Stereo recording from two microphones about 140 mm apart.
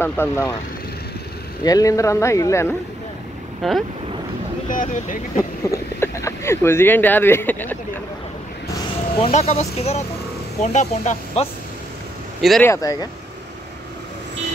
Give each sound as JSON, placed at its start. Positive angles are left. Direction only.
{"t": 0.0, "sound": "speech", "side_deg": 20}
{"t": 1.6, "sound": "speech", "side_deg": 25}
{"t": 3.6, "sound": "speech", "side_deg": 0}
{"t": 4.6, "sound": "speech", "side_deg": 75}
{"t": 5.4, "sound": "speech", "side_deg": 20}
{"t": 9.1, "sound": "speech", "side_deg": 45}
{"t": 12.4, "sound": "speech", "side_deg": 0}
{"t": 12.6, "sound": "speech", "side_deg": 25}